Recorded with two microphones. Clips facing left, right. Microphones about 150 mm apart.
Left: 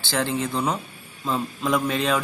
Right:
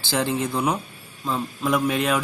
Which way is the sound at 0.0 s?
10° right (ahead or behind).